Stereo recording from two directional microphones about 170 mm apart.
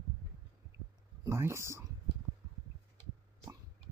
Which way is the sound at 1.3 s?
15° right (ahead or behind).